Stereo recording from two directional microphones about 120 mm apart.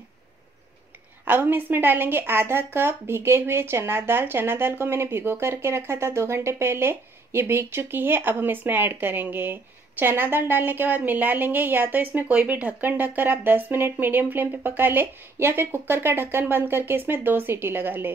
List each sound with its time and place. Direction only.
1.2 s a woman's voice: 15° right (ahead or behind)